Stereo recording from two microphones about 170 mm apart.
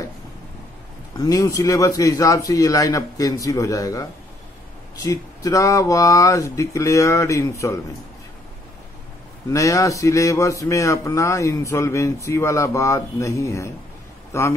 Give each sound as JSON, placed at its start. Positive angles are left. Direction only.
{"t": 1.1, "sound": "a man's voice", "side_deg": 20}
{"t": 9.5, "sound": "speech", "side_deg": 20}